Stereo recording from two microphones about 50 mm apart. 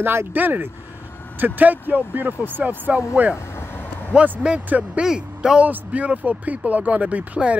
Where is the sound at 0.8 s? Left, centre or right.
Left.